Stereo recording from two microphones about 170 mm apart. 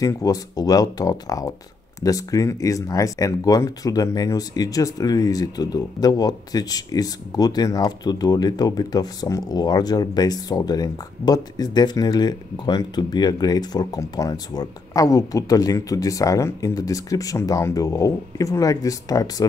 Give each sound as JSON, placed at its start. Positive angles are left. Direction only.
{"t": 0.0, "sound": "speech", "side_deg": 20}